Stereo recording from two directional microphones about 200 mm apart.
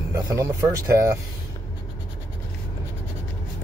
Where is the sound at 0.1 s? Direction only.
15° right (ahead or behind).